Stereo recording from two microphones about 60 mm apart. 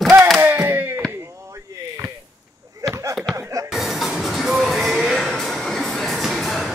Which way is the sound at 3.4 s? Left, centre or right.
Right.